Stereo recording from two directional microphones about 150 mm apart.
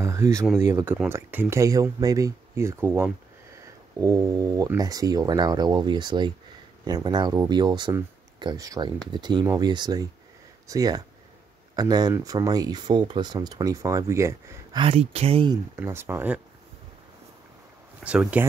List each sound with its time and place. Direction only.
0.6 s speech: 15° right (ahead or behind)
14.8 s speech: 40° right (ahead or behind)
15.5 s speech: 15° right (ahead or behind)
18.0 s speech: 10° right (ahead or behind)